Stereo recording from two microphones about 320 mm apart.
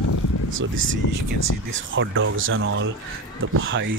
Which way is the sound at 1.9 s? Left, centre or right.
Right.